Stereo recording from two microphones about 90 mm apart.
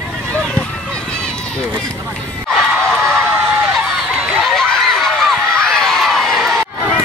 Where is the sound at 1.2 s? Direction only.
10° left (ahead or behind).